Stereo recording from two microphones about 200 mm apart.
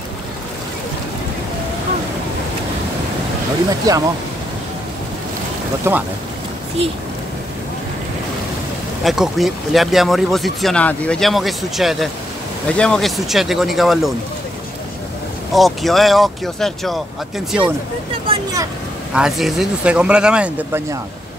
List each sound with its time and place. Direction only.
3.9 s speech: 20° right (ahead or behind)
5.9 s speech: 10° right (ahead or behind)
6.8 s speech: 30° right (ahead or behind)
9.0 s speech: centre (ahead or behind)
15.5 s speech: centre (ahead or behind)
18.2 s speech: 20° right (ahead or behind)
19.1 s speech: centre (ahead or behind)